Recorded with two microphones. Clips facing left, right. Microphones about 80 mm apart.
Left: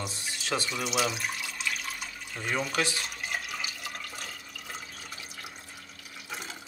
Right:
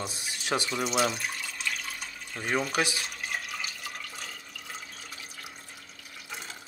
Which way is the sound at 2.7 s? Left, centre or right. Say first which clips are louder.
Right 1 dB; centre.